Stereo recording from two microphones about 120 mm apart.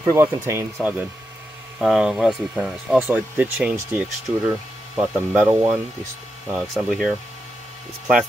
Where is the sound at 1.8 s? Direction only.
Centre (ahead or behind).